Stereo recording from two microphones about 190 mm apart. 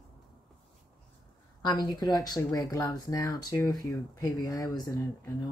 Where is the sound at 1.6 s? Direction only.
20° left (ahead or behind).